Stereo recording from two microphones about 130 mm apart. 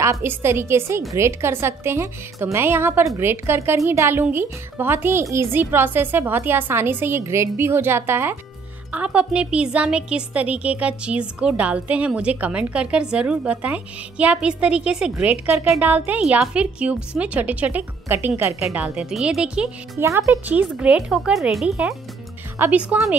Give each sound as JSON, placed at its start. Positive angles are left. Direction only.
{"t": 0.0, "sound": "a woman's voice", "side_deg": -20}
{"t": 18.8, "sound": "a woman's voice", "side_deg": -5}
{"t": 20.0, "sound": "a woman's voice", "side_deg": -20}